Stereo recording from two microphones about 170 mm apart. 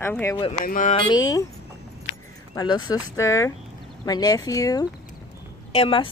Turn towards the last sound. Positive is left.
turn(degrees=30)  # may be behind; listen again after turning